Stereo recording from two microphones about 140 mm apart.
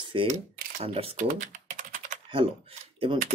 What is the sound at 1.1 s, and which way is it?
Typing, 65° right (ahead or behind).